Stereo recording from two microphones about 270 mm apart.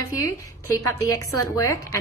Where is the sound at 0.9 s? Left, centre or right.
Centre.